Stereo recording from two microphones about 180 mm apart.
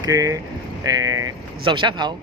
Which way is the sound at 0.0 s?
20° right (ahead or behind).